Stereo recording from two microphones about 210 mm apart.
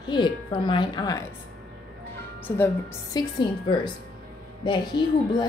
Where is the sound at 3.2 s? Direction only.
20° left (ahead or behind).